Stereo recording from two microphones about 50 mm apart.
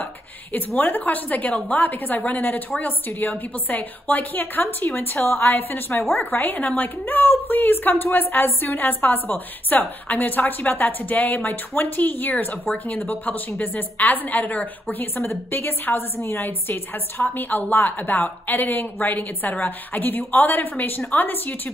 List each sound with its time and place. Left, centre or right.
0.0 s a sound: left
0.7 s a woman's voice: left
15.1 s a woman's voice: left